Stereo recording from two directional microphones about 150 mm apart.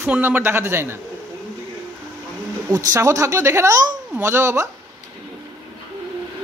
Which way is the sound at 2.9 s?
20° right (ahead or behind).